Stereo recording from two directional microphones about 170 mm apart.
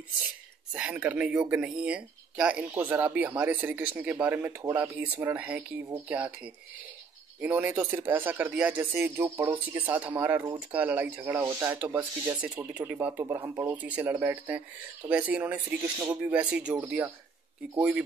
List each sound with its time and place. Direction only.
0.7 s speech: 5° right (ahead or behind)
7.4 s speech: 10° right (ahead or behind)